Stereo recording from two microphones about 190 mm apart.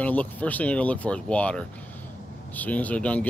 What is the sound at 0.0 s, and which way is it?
Speech, 10° left (ahead or behind).